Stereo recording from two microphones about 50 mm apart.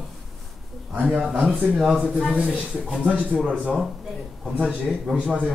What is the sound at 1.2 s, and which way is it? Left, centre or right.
Speech, centre.